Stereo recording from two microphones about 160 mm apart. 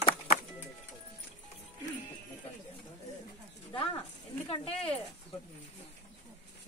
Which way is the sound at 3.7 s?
35° left (ahead or behind).